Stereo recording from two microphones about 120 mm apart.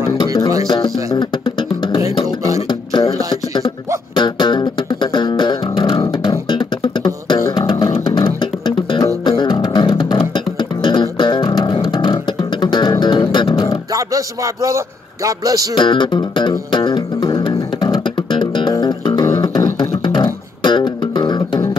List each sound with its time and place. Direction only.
0.7 s music: 35° left (ahead or behind)
2.2 s a sound: 30° right (ahead or behind)
2.7 s beatboxing: 40° left (ahead or behind)
4.1 s music: 40° left (ahead or behind)
13.9 s a sound: 30° right (ahead or behind)
15.2 s music: 30° right (ahead or behind)
15.7 s music: 40° left (ahead or behind)
19.4 s beatboxing: 35° left (ahead or behind)
20.0 s music: 40° left (ahead or behind)